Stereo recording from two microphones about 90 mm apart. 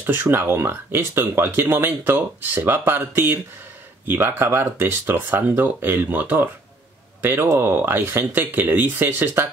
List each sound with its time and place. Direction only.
0.0 s speech: 25° right (ahead or behind)